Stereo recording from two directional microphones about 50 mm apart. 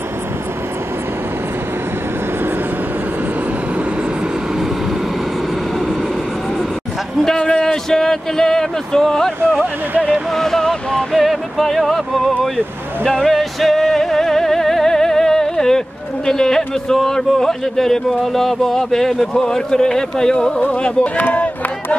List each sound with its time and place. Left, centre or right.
7.2 s a man's voice: centre
11.1 s music: centre
12.5 s a sound: centre
16.3 s a man's voice: centre; by 21.5 s left